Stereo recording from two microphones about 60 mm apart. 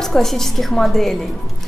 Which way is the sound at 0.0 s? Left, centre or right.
Centre.